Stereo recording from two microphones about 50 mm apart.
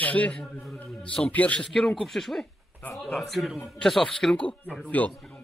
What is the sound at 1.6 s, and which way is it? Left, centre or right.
A man's voice, centre.